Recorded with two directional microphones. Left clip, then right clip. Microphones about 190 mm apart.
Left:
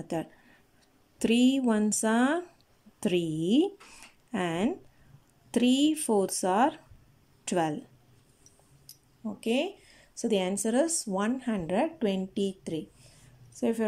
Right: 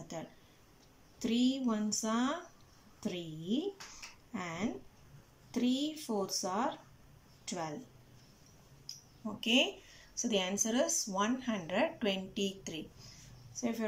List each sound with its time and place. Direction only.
1.2 s speech: 50° left (ahead or behind)
9.2 s speech: 25° left (ahead or behind)
10.1 s speech: 35° left (ahead or behind)
13.6 s speech: 45° left (ahead or behind)